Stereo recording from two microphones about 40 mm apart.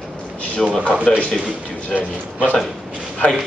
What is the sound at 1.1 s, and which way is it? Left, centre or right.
Speech, centre.